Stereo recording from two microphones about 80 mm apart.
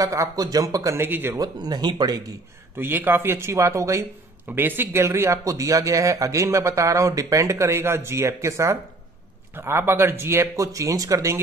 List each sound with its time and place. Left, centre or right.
0.0 s speech: right
1.0 s speech: right
1.4 s speech: right
2.8 s speech: right
4.5 s speech: right